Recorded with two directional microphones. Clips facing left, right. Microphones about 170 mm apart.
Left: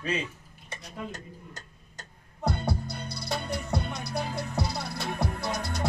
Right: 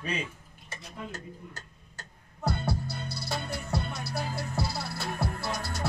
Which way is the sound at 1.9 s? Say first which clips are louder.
Left 1 dB; 20° left (ahead or behind).